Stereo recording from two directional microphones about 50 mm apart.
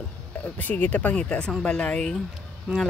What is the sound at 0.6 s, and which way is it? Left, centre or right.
Speech, left.